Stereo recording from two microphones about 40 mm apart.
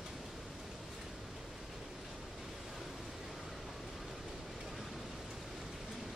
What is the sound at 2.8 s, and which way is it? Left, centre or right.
Pink noise, centre.